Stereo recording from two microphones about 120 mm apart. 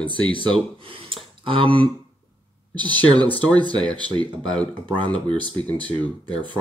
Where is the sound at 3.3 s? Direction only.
15° left (ahead or behind).